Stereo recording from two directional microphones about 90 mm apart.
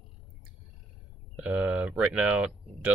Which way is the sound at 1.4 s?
15° right (ahead or behind).